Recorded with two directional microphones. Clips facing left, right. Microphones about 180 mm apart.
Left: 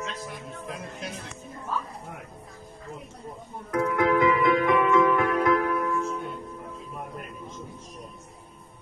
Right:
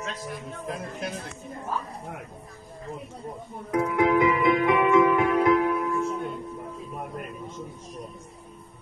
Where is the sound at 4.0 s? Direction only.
15° right (ahead or behind).